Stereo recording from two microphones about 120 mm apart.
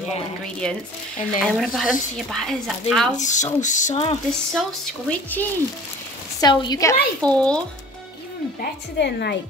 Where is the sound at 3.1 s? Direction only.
85° left.